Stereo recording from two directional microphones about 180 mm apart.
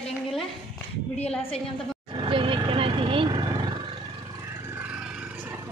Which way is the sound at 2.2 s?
30° right (ahead or behind).